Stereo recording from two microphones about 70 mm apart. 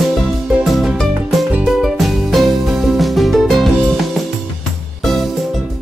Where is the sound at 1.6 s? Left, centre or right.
Centre.